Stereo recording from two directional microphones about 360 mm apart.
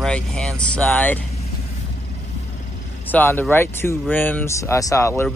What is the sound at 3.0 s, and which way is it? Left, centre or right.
Speech, centre.